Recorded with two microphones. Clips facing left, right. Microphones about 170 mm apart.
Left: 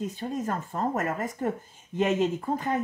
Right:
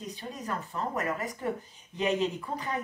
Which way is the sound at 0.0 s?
50° left (ahead or behind).